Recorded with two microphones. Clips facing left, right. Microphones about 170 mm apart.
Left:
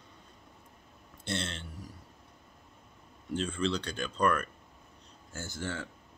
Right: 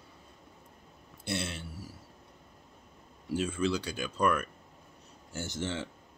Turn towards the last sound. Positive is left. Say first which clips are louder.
# right 2 dB
turn(degrees=-20)  # may be behind; listen again after turning